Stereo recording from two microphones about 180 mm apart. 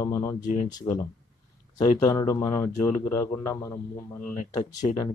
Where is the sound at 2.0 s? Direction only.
20° left (ahead or behind).